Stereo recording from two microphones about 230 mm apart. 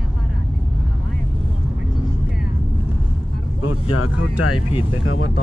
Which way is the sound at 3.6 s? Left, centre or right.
Left.